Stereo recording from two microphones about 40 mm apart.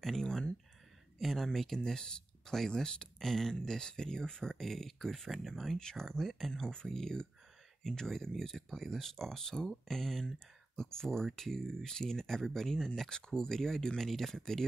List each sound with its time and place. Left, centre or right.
0.0 s speech: centre
1.8 s speech: centre
5.8 s speech: centre
6.6 s speech: centre